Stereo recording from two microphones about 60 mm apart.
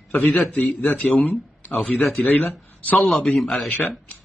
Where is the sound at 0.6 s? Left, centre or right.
Left.